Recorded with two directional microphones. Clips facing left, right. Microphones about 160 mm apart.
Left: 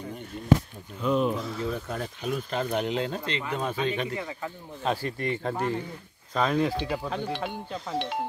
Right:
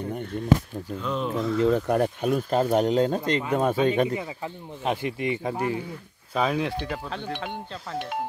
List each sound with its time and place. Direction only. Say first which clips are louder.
1.0 s speech: left 5 dB; 5° left (ahead or behind)
1.6 s speech: right 10 dB; 70° right (ahead or behind); by 4.1 s 45° right (ahead or behind)
4.1 s speech: right 3 dB; 20° right (ahead or behind)
6.9 s speech: left 2 dB; 5° left (ahead or behind)